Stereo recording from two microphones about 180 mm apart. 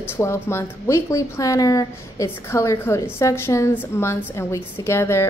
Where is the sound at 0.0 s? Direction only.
15° left (ahead or behind).